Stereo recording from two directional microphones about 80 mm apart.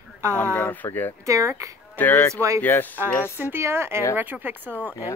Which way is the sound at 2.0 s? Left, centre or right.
Left.